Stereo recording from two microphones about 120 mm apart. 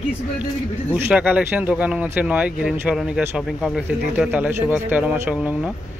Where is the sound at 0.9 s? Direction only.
15° right (ahead or behind).